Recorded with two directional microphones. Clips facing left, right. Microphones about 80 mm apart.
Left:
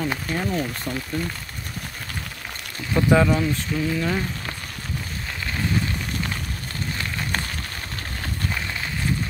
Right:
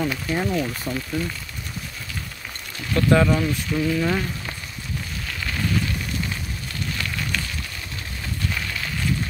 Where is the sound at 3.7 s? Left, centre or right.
Centre.